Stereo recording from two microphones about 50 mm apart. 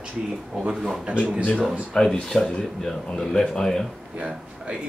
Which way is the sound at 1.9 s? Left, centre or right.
Centre.